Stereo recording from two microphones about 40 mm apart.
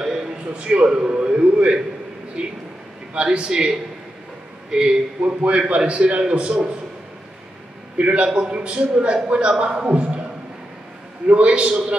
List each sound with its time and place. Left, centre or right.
0.0 s a sound: centre
0.5 s a man's voice: right
5.2 s a man's voice: right
8.0 s a man's voice: right
11.2 s a man's voice: right